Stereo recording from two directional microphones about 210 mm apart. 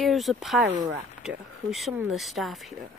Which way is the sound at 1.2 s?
Centre (ahead or behind).